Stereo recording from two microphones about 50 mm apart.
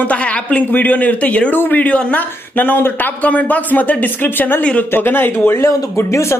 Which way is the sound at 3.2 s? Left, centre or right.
Left.